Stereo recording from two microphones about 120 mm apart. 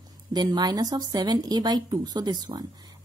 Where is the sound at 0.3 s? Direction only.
35° right (ahead or behind).